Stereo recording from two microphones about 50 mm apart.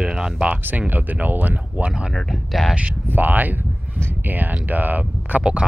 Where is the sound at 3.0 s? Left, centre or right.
Right.